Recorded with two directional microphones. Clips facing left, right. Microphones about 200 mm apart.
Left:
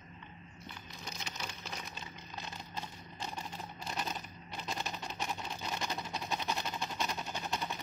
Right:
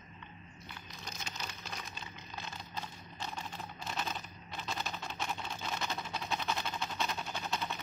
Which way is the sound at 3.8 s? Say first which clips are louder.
Even; 10° left (ahead or behind).